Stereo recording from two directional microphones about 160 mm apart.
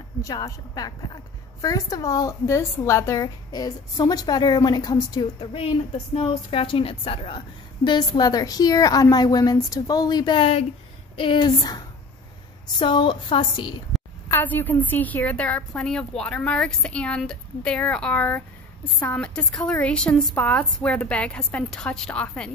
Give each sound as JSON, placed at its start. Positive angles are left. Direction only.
{"t": 0.2, "sound": "a woman's voice", "side_deg": 25}
{"t": 14.3, "sound": "a woman's voice", "side_deg": 10}